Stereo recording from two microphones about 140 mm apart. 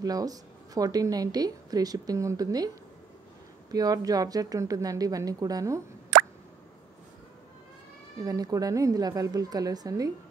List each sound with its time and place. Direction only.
0.0 s a woman's voice: 25° right (ahead or behind)
3.7 s a woman's voice: 25° right (ahead or behind)
8.2 s a woman's voice: 25° right (ahead or behind)